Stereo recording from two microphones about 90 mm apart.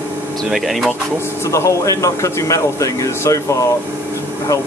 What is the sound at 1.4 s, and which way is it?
A man's voice, 35° left (ahead or behind).